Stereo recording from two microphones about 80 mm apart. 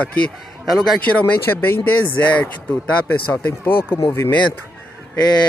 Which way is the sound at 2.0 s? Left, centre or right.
Left.